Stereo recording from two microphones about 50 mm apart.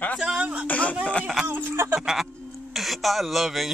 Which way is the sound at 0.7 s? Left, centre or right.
Left.